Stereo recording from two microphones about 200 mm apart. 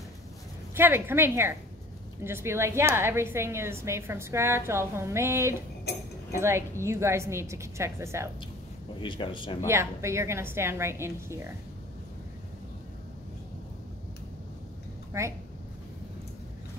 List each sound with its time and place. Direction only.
0.7 s a woman's voice: 10° right (ahead or behind)
9.0 s speech: 25° left (ahead or behind)
9.7 s a woman's voice: 15° right (ahead or behind)
15.1 s a woman's voice: 15° right (ahead or behind)